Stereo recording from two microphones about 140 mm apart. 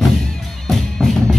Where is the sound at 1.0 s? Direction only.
5° left (ahead or behind).